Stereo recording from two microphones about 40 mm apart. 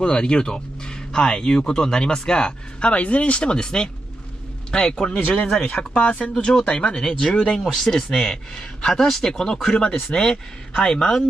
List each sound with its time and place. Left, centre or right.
0.0 s speech: centre
2.9 s speech: left
3.6 s speech: centre
7.6 s speech: centre